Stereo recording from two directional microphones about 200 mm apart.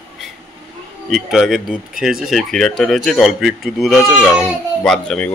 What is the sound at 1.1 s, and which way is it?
Speech, centre (ahead or behind).